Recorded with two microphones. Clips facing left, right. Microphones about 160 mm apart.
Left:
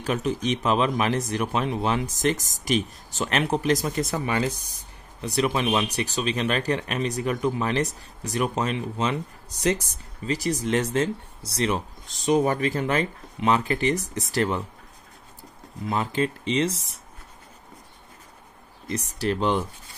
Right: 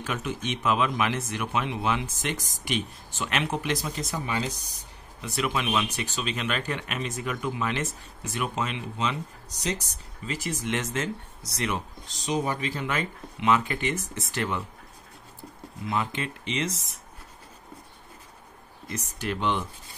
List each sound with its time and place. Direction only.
0.0 s speech: 35° left (ahead or behind); by 4.6 s 55° left (ahead or behind)
5.2 s speech: 35° left (ahead or behind); by 9.8 s 55° left (ahead or behind)
10.2 s speech: 35° left (ahead or behind)
12.3 s speech: 50° left (ahead or behind)
15.9 s speech: 35° left (ahead or behind)
18.9 s speech: 35° left (ahead or behind)